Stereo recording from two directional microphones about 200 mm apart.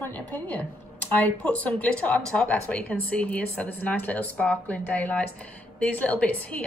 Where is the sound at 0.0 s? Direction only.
10° left (ahead or behind).